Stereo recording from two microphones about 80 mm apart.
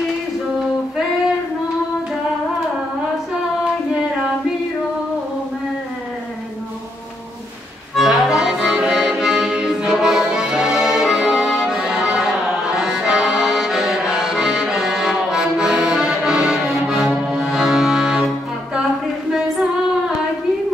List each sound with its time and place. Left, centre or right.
7.9 s accordion: centre
17.3 s music: centre